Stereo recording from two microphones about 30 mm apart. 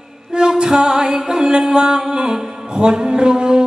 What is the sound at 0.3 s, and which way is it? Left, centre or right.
Music, right.